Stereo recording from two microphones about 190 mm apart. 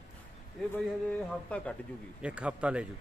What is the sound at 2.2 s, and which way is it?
Speech, 5° right (ahead or behind).